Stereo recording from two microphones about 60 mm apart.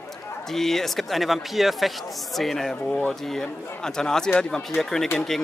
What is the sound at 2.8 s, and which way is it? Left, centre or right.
Speech, left.